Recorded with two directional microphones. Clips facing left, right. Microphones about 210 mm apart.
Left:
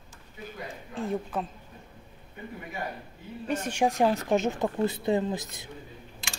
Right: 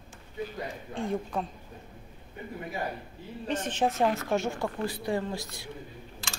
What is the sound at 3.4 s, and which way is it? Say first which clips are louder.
A woman's voice: left 2 dB; 10° left (ahead or behind).